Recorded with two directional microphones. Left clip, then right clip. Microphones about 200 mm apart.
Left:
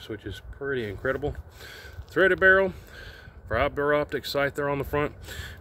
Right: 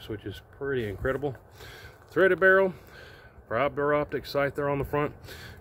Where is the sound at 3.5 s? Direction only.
25° left (ahead or behind).